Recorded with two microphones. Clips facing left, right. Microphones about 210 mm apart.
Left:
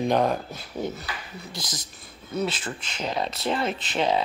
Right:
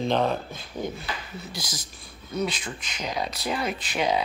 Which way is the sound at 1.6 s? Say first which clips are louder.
Even; 20° left (ahead or behind).